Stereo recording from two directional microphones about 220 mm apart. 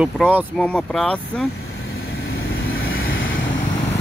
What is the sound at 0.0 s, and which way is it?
Speech, centre (ahead or behind).